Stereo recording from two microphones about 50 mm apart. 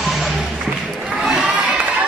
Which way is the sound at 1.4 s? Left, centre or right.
Right.